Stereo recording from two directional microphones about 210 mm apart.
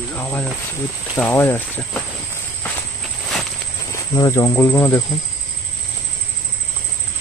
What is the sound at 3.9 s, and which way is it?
Speech, 15° left (ahead or behind).